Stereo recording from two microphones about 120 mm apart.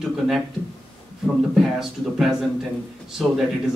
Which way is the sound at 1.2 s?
5° right (ahead or behind).